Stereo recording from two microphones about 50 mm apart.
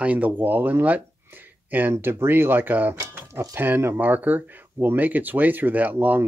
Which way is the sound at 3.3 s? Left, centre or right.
Right.